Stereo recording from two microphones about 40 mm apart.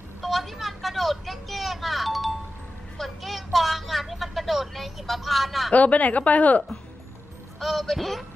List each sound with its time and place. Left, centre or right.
0.2 s vehicle: centre
3.0 s a sound: centre
5.7 s a woman's voice: left
7.6 s speech: centre